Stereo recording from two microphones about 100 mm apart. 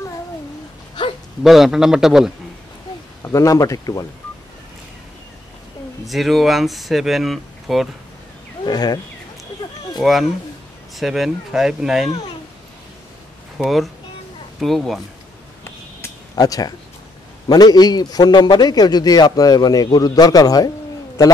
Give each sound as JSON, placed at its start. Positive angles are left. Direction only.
{"t": 1.4, "sound": "speech", "side_deg": 0}
{"t": 3.2, "sound": "a man's voice", "side_deg": 30}
{"t": 6.0, "sound": "speech", "side_deg": 0}
{"t": 8.6, "sound": "speech", "side_deg": 45}
{"t": 9.6, "sound": "a sound", "side_deg": 45}
{"t": 9.9, "sound": "speech", "side_deg": 0}
{"t": 13.6, "sound": "speech", "side_deg": 0}
{"t": 16.3, "sound": "a man's voice", "side_deg": 40}